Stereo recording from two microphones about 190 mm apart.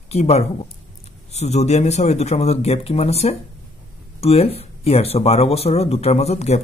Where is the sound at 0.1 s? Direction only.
35° left (ahead or behind).